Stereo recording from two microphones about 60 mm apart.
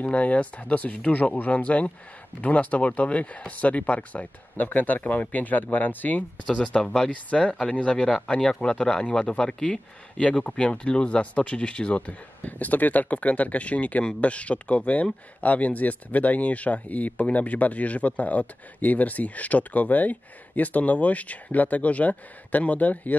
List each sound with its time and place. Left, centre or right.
0.0 s speech: left
6.6 s speech: centre
7.2 s speech: left